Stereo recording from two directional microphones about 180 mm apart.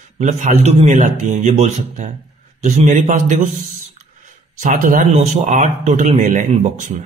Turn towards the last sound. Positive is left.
turn(degrees=-45)  # may be behind; listen again after turning